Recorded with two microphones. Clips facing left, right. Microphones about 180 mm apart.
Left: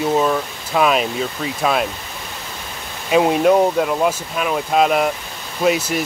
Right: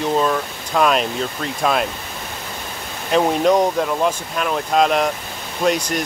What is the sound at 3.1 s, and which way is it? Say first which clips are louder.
Speech: left 2 dB; 5° left (ahead or behind).